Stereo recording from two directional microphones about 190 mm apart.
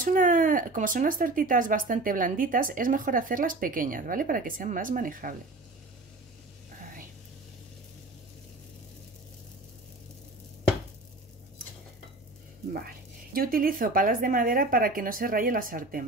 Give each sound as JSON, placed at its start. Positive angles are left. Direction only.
{"t": 0.0, "sound": "speech", "side_deg": -45}
{"t": 13.3, "sound": "speech", "side_deg": -50}